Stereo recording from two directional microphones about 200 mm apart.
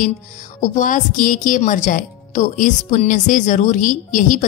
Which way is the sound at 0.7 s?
40° left (ahead or behind).